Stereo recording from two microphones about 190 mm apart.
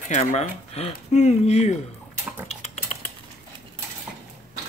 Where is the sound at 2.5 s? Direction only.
35° left (ahead or behind).